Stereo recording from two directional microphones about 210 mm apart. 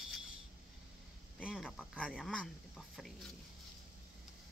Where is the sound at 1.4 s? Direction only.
5° right (ahead or behind).